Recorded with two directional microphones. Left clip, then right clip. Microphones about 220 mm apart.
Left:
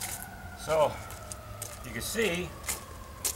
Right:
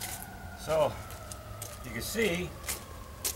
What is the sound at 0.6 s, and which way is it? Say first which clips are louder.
Speech: left 2 dB; centre (ahead or behind).